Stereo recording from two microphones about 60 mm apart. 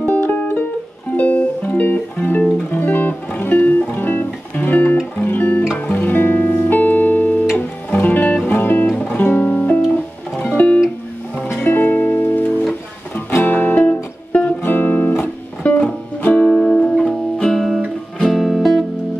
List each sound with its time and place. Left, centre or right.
0.0 s music: left
16.4 s music: centre